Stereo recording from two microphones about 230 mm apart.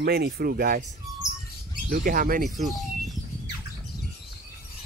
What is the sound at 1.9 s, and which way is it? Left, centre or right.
Speech, right.